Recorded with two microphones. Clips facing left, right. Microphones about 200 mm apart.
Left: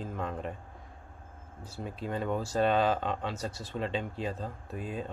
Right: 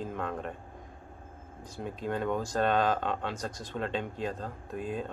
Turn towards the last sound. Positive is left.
turn(degrees=5)  # may be behind; listen again after turning